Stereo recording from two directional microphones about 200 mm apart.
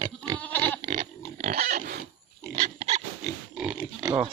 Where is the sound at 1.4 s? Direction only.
40° right (ahead or behind).